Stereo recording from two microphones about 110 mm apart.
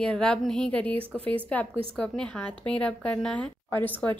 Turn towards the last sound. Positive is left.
turn(degrees=15)  # may be behind; listen again after turning